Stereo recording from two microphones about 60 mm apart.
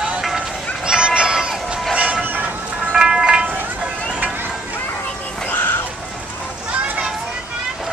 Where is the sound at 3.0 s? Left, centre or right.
Centre.